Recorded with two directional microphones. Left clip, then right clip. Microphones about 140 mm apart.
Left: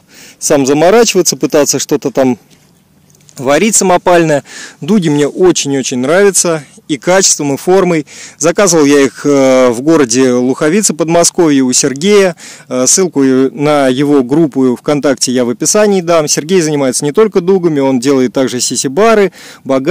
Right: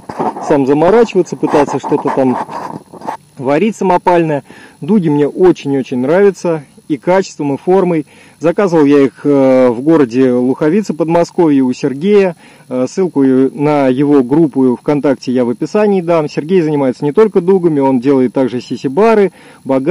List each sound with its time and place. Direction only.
0.4 s speech: 35° left (ahead or behind)
3.3 s speech: 40° left (ahead or behind)